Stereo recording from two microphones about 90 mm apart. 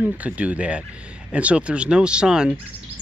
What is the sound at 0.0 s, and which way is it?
Speech, 15° right (ahead or behind).